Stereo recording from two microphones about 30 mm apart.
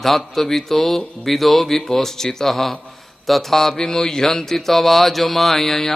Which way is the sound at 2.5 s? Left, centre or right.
Centre.